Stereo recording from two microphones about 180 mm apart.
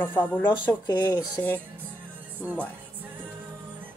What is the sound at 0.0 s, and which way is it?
Speech, 10° left (ahead or behind).